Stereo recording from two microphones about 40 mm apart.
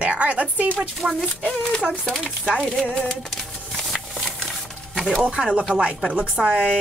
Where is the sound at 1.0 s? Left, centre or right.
Right.